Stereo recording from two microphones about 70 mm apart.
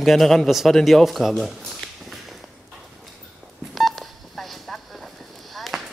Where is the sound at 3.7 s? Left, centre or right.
Centre.